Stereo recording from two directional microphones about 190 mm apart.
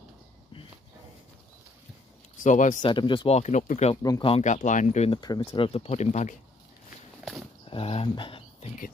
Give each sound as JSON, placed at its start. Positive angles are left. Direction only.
{"t": 2.4, "sound": "speech", "side_deg": 40}
{"t": 2.8, "sound": "speech", "side_deg": 25}
{"t": 3.9, "sound": "speech", "side_deg": 20}
{"t": 5.2, "sound": "speech", "side_deg": 20}
{"t": 7.7, "sound": "a sound", "side_deg": 30}